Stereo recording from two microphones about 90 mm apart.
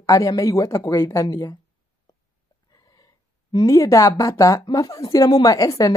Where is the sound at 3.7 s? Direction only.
35° left (ahead or behind).